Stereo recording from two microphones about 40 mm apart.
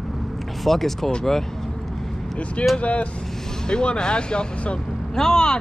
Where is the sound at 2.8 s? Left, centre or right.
Left.